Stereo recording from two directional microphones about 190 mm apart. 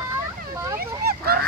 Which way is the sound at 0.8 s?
55° right (ahead or behind).